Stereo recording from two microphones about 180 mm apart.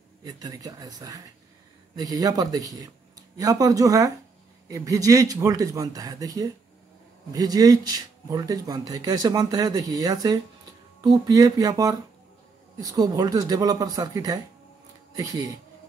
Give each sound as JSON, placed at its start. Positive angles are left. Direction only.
{"t": 0.2, "sound": "speech", "side_deg": -20}